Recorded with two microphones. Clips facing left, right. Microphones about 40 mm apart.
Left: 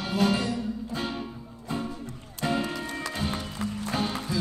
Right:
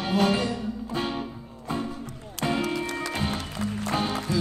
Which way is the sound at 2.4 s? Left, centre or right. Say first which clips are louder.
Right 1 dB; right.